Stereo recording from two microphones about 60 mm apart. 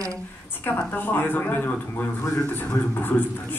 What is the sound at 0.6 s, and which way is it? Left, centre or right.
A woman's voice, left.